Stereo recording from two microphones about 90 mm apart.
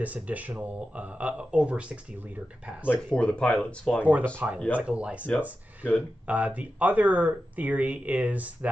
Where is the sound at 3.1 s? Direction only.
10° left (ahead or behind).